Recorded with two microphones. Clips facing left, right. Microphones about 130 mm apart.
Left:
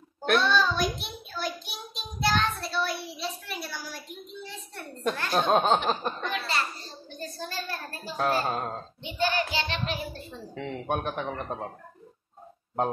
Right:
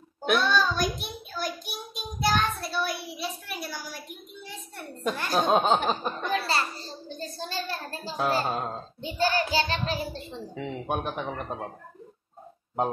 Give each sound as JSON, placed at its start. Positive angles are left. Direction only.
{"t": 0.2, "sound": "a sound", "side_deg": -5}
{"t": 1.0, "sound": "child singing", "side_deg": -5}
{"t": 3.6, "sound": "a woman's voice", "side_deg": -5}
{"t": 6.3, "sound": "a child's voice", "side_deg": -35}
{"t": 8.2, "sound": "a woman's voice", "side_deg": 0}
{"t": 9.0, "sound": "a child's voice", "side_deg": -35}
{"t": 10.5, "sound": "a woman's voice", "side_deg": -5}